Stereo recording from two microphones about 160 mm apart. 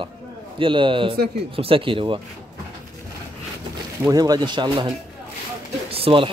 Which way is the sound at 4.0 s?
25° right (ahead or behind).